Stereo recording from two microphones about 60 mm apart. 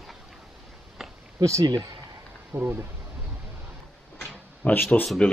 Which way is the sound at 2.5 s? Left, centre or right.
Right.